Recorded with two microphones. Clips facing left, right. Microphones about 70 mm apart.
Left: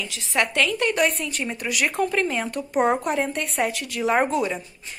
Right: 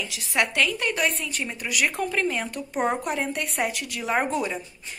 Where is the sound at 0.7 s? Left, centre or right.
Centre.